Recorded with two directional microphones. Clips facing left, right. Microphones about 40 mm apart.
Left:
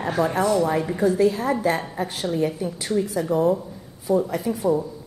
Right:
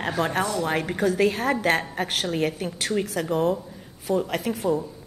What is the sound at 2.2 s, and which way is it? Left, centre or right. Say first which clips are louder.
A woman's voice: left 6 dB; right.